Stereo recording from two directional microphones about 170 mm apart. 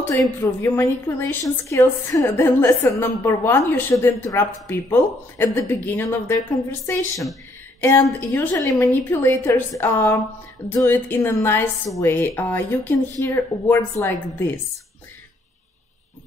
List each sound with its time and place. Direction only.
0.4 s a woman's voice: 15° left (ahead or behind)